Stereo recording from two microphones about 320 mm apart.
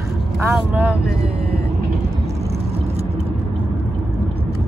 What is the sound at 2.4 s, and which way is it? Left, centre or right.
Vehicle, centre.